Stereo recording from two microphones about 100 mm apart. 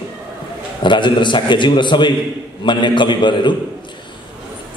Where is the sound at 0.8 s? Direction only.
55° left (ahead or behind).